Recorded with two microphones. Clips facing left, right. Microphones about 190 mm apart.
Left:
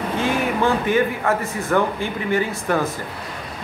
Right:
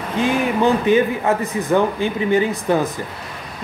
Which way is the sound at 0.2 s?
20° right (ahead or behind).